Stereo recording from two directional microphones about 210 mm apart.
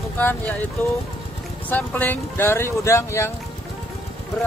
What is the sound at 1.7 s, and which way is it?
Speech, 10° left (ahead or behind).